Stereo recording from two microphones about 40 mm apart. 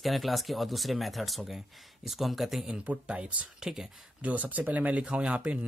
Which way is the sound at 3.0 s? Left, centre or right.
Right.